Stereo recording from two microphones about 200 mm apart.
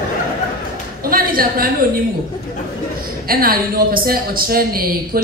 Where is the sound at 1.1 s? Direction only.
45° right (ahead or behind).